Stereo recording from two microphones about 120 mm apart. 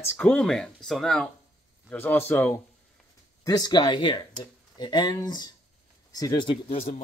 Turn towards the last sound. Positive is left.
turn(degrees=45)  # may be behind; listen again after turning